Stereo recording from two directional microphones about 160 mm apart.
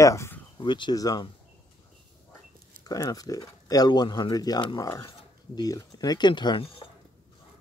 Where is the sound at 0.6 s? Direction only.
30° left (ahead or behind).